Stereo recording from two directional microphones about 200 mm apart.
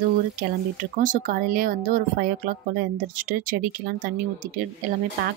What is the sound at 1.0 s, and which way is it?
Speech, 40° right (ahead or behind).